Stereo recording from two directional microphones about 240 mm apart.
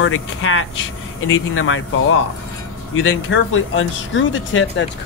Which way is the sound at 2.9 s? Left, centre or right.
Left.